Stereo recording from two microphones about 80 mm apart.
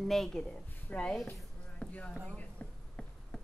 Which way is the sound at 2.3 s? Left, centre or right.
Centre.